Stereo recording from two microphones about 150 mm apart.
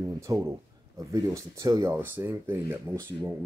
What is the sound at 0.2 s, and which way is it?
Speech, 20° right (ahead or behind).